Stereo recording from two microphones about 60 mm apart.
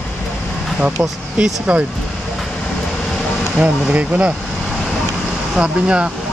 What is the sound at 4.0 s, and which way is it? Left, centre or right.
Speech, centre.